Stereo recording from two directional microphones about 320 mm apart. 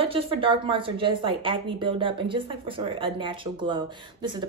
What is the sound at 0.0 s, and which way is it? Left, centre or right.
Speech, centre.